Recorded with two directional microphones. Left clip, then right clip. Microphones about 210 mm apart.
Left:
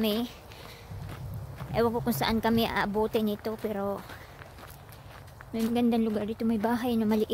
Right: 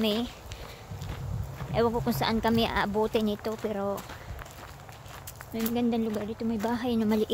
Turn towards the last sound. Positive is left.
turn(degrees=10)  # may be behind; listen again after turning